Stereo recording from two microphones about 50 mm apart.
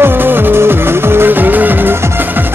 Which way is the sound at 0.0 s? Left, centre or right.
Right.